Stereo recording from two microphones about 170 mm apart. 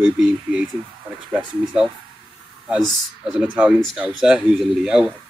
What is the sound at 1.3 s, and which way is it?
Speech, 5° right (ahead or behind).